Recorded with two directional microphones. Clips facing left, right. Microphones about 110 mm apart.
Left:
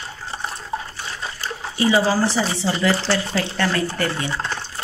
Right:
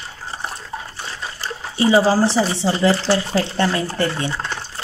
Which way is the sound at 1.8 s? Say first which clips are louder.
Right 3 dB; 30° right (ahead or behind).